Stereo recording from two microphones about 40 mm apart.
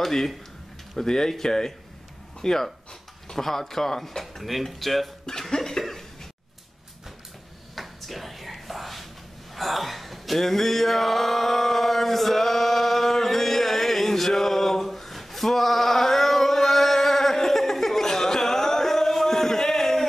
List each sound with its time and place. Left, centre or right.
0.0 s speech: centre
4.4 s speech: centre
5.5 s cough: centre
7.7 s a sound: centre
9.6 s male singing: centre